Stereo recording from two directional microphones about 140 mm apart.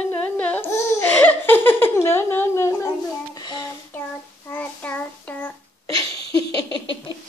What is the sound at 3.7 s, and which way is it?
Child singing, 15° left (ahead or behind).